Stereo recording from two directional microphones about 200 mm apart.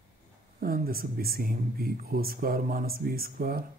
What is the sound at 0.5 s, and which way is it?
Speech, 50° right (ahead or behind).